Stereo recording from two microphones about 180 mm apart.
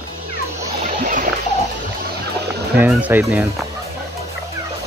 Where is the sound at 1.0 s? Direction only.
50° right (ahead or behind).